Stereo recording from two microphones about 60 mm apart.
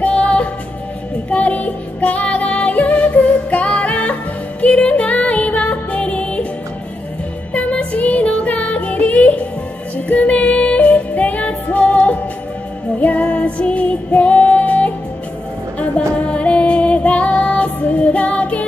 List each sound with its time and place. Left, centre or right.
0.0 s music: left
7.5 s music: left
15.8 s female singing: left
17.7 s music: left